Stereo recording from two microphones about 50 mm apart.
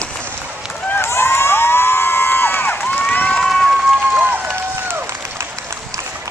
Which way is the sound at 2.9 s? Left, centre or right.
Left.